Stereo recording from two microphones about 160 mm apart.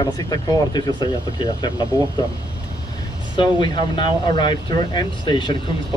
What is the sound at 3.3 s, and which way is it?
Speech, 30° left (ahead or behind).